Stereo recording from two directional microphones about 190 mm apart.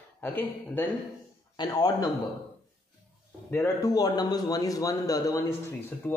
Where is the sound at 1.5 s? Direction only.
20° left (ahead or behind).